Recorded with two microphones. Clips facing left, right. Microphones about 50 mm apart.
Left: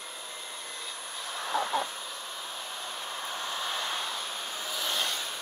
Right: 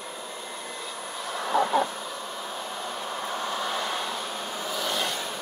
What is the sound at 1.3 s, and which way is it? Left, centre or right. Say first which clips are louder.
Vehicle: right 6 dB; right.